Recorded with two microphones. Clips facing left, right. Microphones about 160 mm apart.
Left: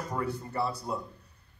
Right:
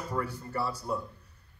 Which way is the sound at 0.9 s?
20° left (ahead or behind).